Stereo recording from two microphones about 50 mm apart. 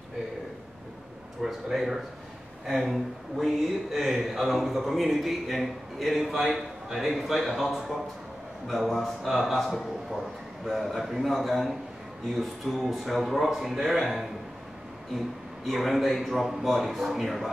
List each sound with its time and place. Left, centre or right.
1.4 s speech: centre